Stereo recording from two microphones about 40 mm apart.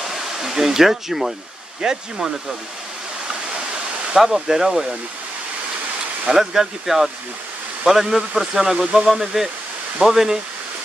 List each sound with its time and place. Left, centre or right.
0.1 s waterfall: centre
1.8 s speech: centre
4.2 s speech: centre
6.3 s speech: centre